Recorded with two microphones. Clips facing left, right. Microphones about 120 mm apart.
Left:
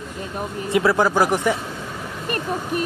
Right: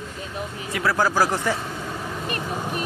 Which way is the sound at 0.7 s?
25° left (ahead or behind).